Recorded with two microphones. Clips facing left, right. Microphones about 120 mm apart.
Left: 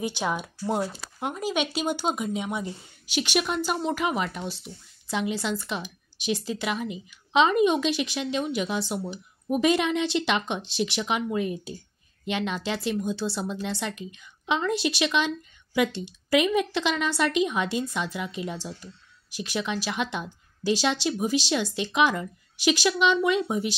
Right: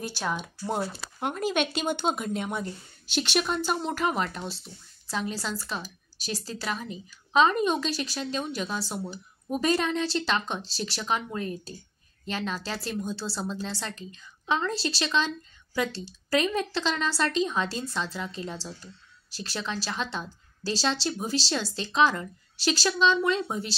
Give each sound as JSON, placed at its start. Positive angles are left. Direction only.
{"t": 0.0, "sound": "speech", "side_deg": 15}